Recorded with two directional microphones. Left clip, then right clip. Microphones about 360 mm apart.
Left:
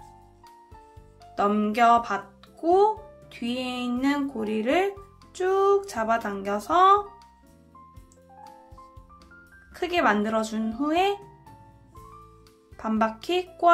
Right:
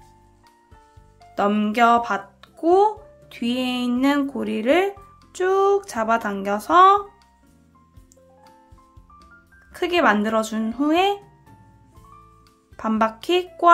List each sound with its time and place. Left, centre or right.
1.3 s a child's voice: centre
9.7 s a child's voice: centre
12.7 s a child's voice: centre